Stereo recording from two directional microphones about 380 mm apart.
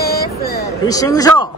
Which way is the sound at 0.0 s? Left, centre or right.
Left.